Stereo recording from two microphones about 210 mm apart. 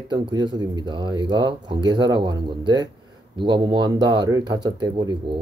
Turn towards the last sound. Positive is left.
turn(degrees=-20)  # may be behind; listen again after turning